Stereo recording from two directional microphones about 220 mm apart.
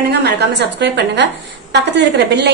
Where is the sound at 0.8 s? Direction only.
50° right (ahead or behind).